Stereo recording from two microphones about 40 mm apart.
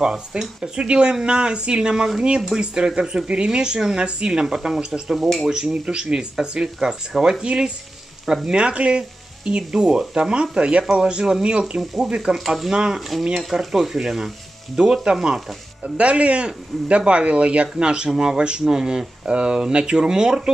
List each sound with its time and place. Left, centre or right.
0.0 s a man's voice: centre
5.1 s speech: centre
5.5 s a man's voice: centre
12.4 s a man's voice: centre
13.5 s speech: centre
15.2 s frying: centre
16.0 s a man's voice: right